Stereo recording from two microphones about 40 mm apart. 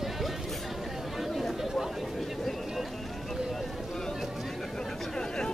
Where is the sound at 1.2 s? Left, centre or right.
Centre.